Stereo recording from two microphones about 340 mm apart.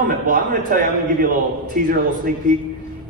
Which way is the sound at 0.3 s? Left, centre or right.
Right.